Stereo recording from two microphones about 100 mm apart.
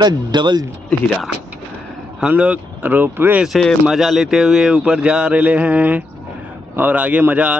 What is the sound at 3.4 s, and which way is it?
Speech, centre (ahead or behind).